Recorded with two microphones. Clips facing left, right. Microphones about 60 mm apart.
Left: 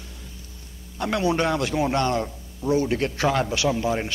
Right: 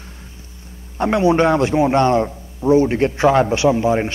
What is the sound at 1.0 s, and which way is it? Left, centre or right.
A man's voice, right.